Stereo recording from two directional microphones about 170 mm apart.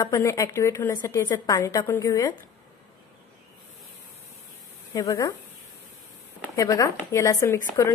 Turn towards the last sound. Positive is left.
turn(degrees=15)  # may be behind; listen again after turning